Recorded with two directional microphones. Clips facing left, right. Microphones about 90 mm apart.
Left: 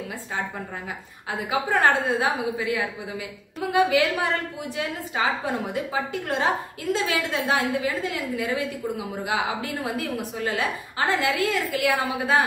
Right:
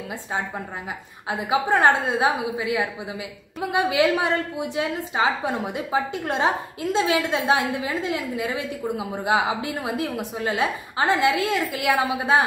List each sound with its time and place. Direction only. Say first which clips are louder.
1.5 s a woman's voice: right 3 dB; 20° right (ahead or behind)